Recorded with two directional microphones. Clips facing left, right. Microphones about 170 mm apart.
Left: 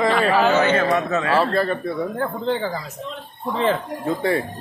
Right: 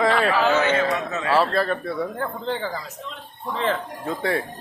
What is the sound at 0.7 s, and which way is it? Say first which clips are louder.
Speech: left 4 dB; 60° left (ahead or behind).